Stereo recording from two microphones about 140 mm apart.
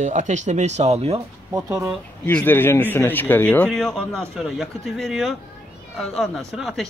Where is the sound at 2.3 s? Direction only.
10° left (ahead or behind).